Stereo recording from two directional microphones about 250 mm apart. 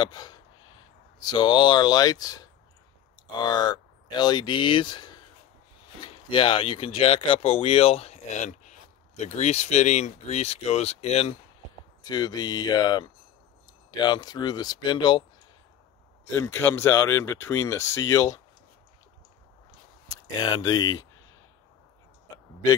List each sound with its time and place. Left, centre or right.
0.0 s speech: centre
6.2 s speech: centre
16.3 s speech: centre
20.1 s speech: centre